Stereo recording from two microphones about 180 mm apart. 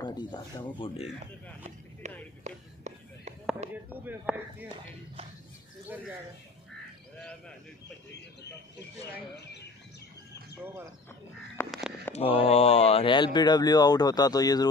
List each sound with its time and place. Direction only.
0.0 s speech: 25° left (ahead or behind)
1.2 s a sound: 40° right (ahead or behind)
3.7 s speech: 10° right (ahead or behind)
7.2 s speech: 5° left (ahead or behind)
12.1 s speech: 35° left (ahead or behind)